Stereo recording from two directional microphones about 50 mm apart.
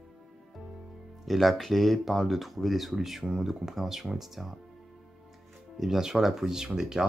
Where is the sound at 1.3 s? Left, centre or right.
Centre.